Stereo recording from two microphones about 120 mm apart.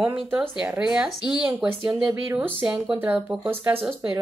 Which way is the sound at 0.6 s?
10° right (ahead or behind).